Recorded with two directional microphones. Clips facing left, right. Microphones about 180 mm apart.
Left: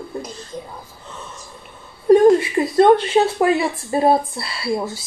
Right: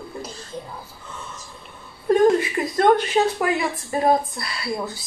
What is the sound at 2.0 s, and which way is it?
A woman's voice, 25° left (ahead or behind).